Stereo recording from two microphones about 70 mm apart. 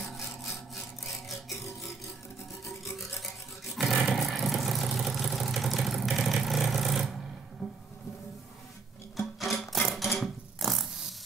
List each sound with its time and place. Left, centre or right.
0.0 s sawing: centre
1.2 s music: centre
3.7 s vehicle: centre
7.6 s music: centre
9.1 s music: centre
10.1 s a sound: centre